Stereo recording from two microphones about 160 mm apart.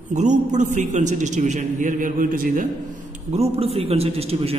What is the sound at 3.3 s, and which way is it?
A man's voice, 40° right (ahead or behind).